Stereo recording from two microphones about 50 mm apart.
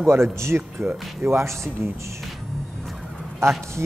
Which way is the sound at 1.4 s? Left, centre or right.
Right.